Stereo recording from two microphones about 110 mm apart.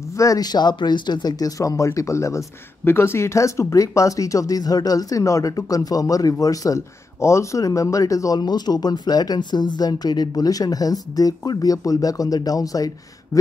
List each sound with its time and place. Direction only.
0.2 s speech: 35° left (ahead or behind)